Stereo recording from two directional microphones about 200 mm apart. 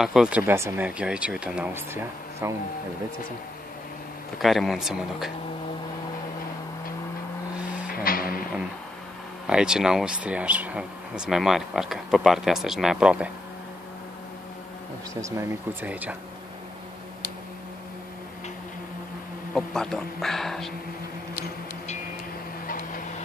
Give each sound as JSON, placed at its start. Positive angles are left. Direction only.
{"t": 0.0, "sound": "speech", "side_deg": 0}
{"t": 4.4, "sound": "speech", "side_deg": 0}
{"t": 7.9, "sound": "music", "side_deg": 45}
{"t": 9.5, "sound": "speech", "side_deg": -5}
{"t": 15.2, "sound": "speech", "side_deg": -10}
{"t": 19.5, "sound": "speech", "side_deg": 5}